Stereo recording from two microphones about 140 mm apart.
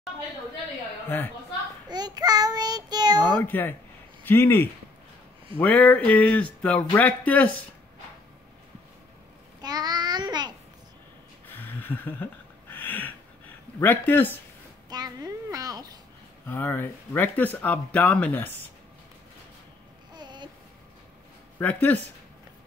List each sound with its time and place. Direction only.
1.9 s a child's voice: 30° right (ahead or behind)
3.4 s speech: 15° left (ahead or behind)
9.6 s child singing: 30° right (ahead or behind)
11.4 s a sound: 15° left (ahead or behind)
13.7 s speech: 15° left (ahead or behind)
14.9 s babbling: 30° right (ahead or behind)
16.4 s speech: 15° left (ahead or behind)
20.2 s babbling: 30° right (ahead or behind)
21.5 s speech: 10° left (ahead or behind)